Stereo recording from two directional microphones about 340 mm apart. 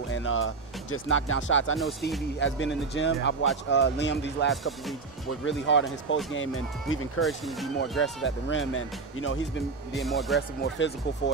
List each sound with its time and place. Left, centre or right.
0.1 s speech: left
1.8 s speech: centre
2.4 s speech: left
4.5 s speech: centre
5.4 s speech: left
7.2 s speech: centre
8.0 s speech: left
9.9 s speech: centre
10.8 s speech: left